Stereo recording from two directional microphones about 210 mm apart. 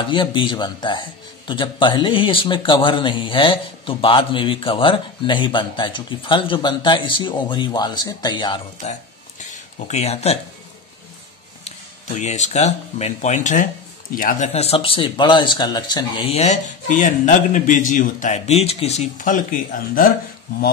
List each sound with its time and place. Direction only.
0.1 s speech: 25° left (ahead or behind)
11.6 s speech: 35° left (ahead or behind)